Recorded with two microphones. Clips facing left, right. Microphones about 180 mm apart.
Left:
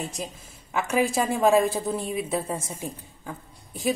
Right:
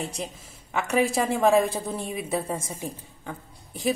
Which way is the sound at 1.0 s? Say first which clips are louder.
Left 1 dB; centre (ahead or behind).